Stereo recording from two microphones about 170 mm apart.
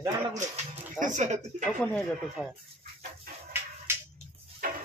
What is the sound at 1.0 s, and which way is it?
Speech, 45° right (ahead or behind).